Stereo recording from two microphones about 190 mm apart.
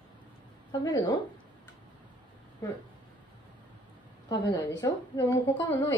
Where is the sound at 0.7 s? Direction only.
20° left (ahead or behind).